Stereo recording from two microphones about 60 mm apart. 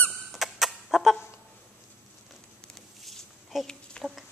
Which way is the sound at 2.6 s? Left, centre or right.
Centre.